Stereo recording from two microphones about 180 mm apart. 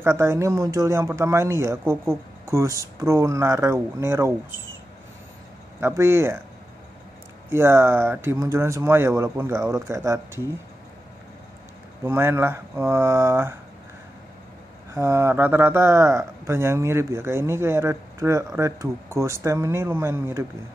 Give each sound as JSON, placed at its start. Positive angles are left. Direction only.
{"t": 0.0, "sound": "speech", "side_deg": -15}
{"t": 5.8, "sound": "speech", "side_deg": -15}
{"t": 7.5, "sound": "speech", "side_deg": -15}
{"t": 12.0, "sound": "speech", "side_deg": -15}
{"t": 15.0, "sound": "speech", "side_deg": -15}